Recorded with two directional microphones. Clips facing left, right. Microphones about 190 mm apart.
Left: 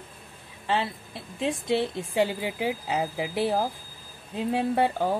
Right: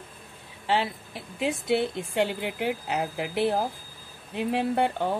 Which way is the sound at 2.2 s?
65° right (ahead or behind).